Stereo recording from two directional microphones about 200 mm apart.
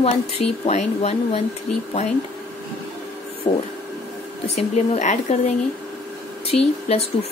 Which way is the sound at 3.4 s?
25° left (ahead or behind).